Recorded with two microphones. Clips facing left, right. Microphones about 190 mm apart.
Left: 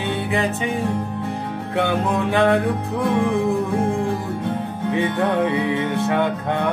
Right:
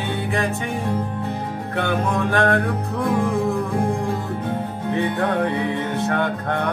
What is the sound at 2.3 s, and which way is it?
Music, 15° left (ahead or behind).